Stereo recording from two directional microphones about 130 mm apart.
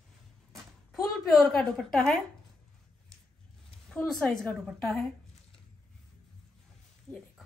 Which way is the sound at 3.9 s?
5° left (ahead or behind).